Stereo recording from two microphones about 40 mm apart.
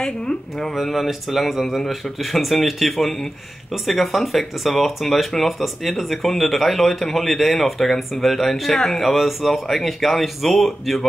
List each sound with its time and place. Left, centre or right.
0.0 s speech: centre
0.9 s speech: centre
8.7 s speech: centre
9.0 s speech: centre